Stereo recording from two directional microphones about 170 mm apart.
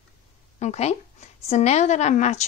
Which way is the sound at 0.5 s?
40° left (ahead or behind).